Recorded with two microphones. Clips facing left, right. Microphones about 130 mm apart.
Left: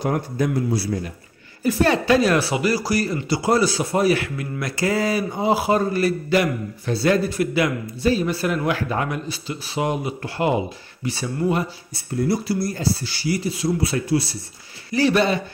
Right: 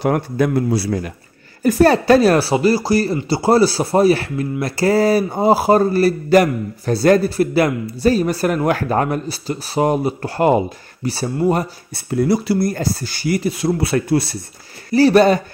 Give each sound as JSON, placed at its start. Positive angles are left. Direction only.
{"t": 0.0, "sound": "a man's voice", "side_deg": -70}
{"t": 1.6, "sound": "speech", "side_deg": -45}
{"t": 11.9, "sound": "speech", "side_deg": -85}
{"t": 14.9, "sound": "speech", "side_deg": -40}